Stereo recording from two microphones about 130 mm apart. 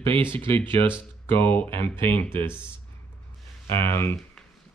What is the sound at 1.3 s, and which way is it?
Speech, 15° left (ahead or behind).